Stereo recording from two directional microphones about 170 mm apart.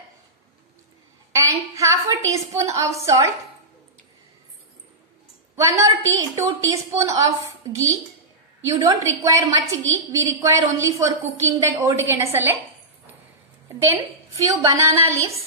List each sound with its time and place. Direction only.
1.3 s a woman's voice: 20° right (ahead or behind)
5.6 s a woman's voice: 20° right (ahead or behind)
13.7 s a woman's voice: 15° right (ahead or behind)